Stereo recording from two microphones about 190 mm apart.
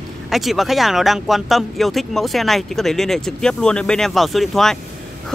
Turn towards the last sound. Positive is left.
turn(degrees=0)  # may be behind; listen again after turning